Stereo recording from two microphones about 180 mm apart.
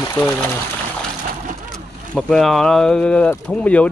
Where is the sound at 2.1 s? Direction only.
Centre (ahead or behind).